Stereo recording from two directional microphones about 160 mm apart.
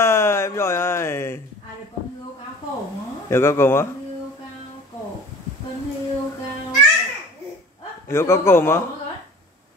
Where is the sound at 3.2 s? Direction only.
15° left (ahead or behind).